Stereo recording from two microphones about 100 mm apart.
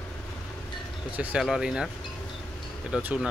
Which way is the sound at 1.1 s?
15° right (ahead or behind).